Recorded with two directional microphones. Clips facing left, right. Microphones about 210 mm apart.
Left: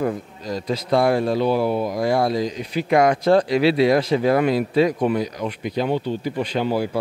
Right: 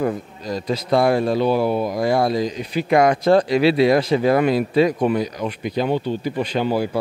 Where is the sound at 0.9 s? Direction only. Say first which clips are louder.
Right 1 dB; 20° right (ahead or behind).